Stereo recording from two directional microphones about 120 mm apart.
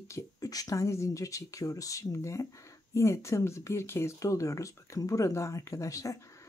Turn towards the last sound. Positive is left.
turn(degrees=25)  # may be behind; listen again after turning